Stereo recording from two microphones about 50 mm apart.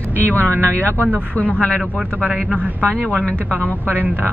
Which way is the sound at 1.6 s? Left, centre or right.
Centre.